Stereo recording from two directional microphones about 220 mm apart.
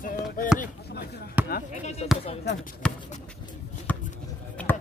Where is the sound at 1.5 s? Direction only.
35° left (ahead or behind).